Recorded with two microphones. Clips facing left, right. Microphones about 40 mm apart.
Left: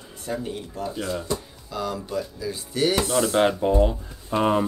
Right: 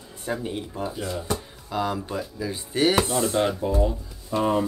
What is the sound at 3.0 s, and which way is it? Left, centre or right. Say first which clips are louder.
Speech: left 3 dB; left.